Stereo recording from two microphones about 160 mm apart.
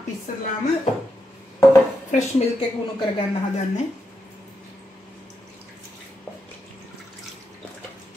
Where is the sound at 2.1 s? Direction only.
45° left (ahead or behind).